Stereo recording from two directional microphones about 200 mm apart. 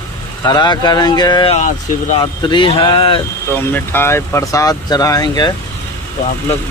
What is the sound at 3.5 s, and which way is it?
Speech, 10° left (ahead or behind).